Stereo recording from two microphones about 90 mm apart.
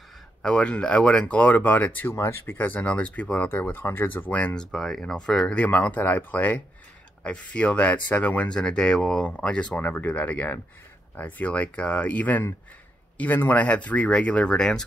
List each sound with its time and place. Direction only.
0.4 s speech: 10° left (ahead or behind)